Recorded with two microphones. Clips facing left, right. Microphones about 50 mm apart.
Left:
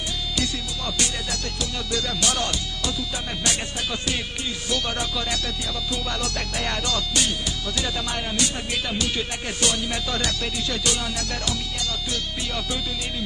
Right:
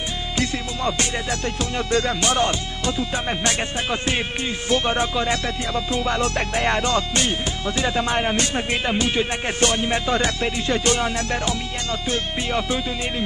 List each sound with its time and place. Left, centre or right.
0.4 s music: right